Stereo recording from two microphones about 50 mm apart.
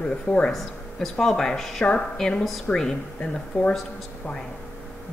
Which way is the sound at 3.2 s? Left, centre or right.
Left.